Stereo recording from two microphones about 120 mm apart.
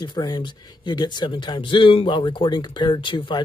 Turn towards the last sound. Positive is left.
turn(degrees=40)  # may be behind; listen again after turning